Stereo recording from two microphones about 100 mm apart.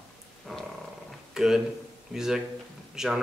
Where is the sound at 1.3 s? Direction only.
5° right (ahead or behind).